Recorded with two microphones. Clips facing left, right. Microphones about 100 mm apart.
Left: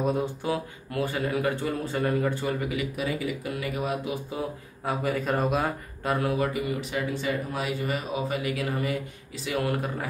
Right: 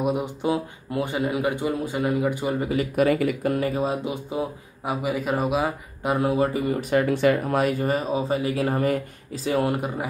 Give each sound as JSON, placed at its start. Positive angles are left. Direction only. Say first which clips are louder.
{"t": 0.0, "sound": "speech", "louder": "right 3 dB", "side_deg": -15}
{"t": 2.6, "sound": "speech", "louder": "right 5 dB", "side_deg": -35}
{"t": 3.0, "sound": "speech", "louder": "right 9 dB", "side_deg": -60}
{"t": 3.5, "sound": "music", "louder": "right 6 dB", "side_deg": -35}
{"t": 4.8, "sound": "speech", "louder": "right 2 dB", "side_deg": -10}
{"t": 6.0, "sound": "music", "louder": "right 4 dB", "side_deg": -20}
{"t": 6.3, "sound": "speech", "louder": "right 4 dB", "side_deg": -30}
{"t": 6.7, "sound": "speech", "louder": "right 8 dB", "side_deg": -50}